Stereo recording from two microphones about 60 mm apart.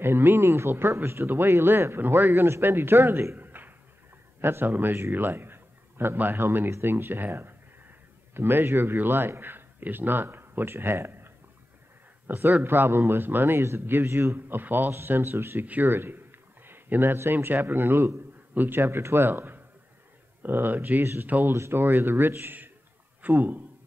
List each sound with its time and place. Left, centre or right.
0.0 s speech: right
3.3 s a sound: right
4.4 s a man's voice: right
14.3 s speech: right
15.6 s speech: right
15.9 s speech: right
21.0 s speech: right
21.3 s speech: right
21.5 s speech: right